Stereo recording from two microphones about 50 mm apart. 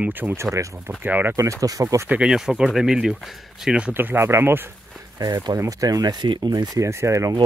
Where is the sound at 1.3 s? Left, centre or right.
Right.